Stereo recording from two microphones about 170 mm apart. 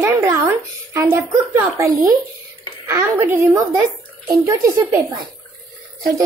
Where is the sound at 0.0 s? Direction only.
15° right (ahead or behind).